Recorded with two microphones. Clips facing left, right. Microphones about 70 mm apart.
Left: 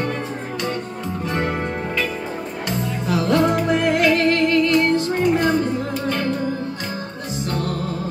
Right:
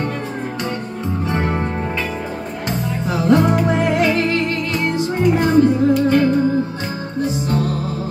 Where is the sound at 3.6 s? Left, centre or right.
Right.